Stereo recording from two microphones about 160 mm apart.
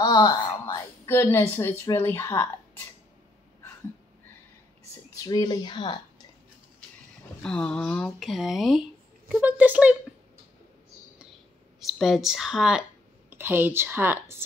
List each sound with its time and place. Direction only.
0.0 s a woman's voice: 25° left (ahead or behind)
5.1 s speech: 25° left (ahead or behind)
7.4 s a woman's voice: 5° left (ahead or behind); by 9.9 s 10° right (ahead or behind)
11.8 s a woman's voice: centre (ahead or behind)
13.3 s a woman's voice: 15° right (ahead or behind)